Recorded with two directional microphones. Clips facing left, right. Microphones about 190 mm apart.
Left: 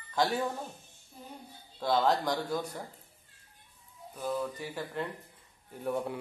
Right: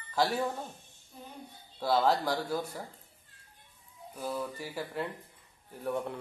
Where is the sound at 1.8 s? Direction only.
5° right (ahead or behind).